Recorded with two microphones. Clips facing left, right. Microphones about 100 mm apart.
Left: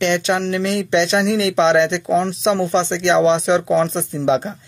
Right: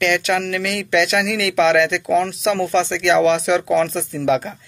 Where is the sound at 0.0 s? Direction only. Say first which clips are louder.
Left 1 dB; 25° left (ahead or behind).